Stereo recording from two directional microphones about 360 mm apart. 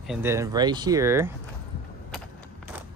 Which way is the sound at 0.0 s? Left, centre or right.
Centre.